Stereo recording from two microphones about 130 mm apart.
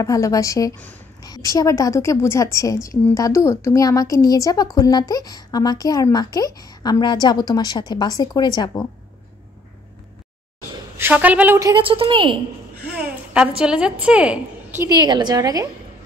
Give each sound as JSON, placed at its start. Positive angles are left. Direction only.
{"t": 0.0, "sound": "a woman's voice", "side_deg": 25}
{"t": 11.0, "sound": "a woman's voice", "side_deg": -10}
{"t": 11.7, "sound": "a woman's voice", "side_deg": -45}
{"t": 12.8, "sound": "a sound", "side_deg": -10}
{"t": 13.6, "sound": "a woman's voice", "side_deg": -5}
{"t": 14.9, "sound": "a woman's voice", "side_deg": -35}